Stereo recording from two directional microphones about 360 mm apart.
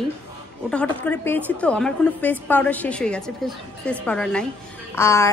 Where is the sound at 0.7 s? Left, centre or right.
Centre.